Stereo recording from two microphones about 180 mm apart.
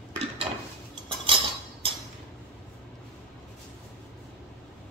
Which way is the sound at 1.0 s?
30° right (ahead or behind).